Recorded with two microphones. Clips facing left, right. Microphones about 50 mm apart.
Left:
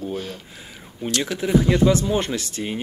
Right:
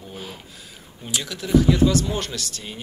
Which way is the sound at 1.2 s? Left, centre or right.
Left.